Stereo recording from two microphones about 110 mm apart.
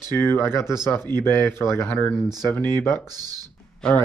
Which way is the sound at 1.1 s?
40° right (ahead or behind).